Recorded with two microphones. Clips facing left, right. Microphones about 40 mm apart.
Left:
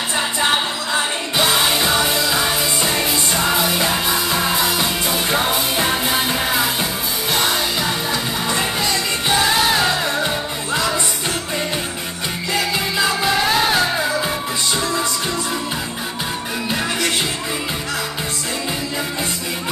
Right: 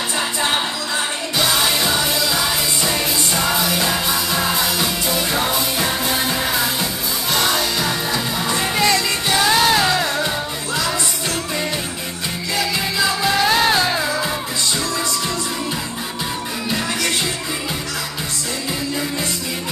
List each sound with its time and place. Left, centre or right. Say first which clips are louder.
0.9 s music: left 3 dB; left; by 9.7 s centre
10.1 s music: left 1 dB; left
13.0 s music: right 1 dB; centre
13.7 s music: even; left